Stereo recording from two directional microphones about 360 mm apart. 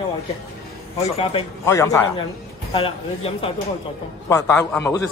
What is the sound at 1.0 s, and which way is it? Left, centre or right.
A man's voice, centre.